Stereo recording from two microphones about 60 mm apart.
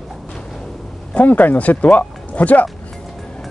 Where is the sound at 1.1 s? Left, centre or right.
Left.